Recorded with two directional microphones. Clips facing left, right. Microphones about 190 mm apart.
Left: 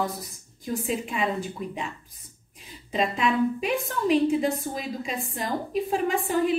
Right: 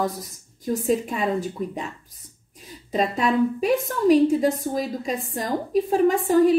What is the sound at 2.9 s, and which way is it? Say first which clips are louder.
A woman's voice: right 3 dB; 40° right (ahead or behind).